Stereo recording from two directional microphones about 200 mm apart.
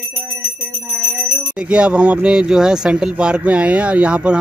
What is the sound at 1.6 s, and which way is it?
Speech, 5° right (ahead or behind).